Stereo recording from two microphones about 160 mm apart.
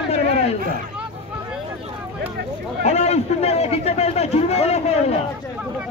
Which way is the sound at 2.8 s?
45° left (ahead or behind).